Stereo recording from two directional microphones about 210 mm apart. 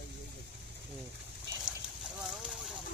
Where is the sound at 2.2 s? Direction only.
5° right (ahead or behind).